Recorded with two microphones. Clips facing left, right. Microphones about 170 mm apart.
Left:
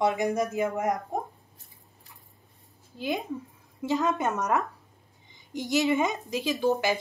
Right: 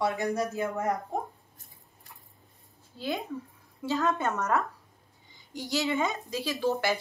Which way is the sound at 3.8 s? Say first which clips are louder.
Left 2 dB; 15° left (ahead or behind).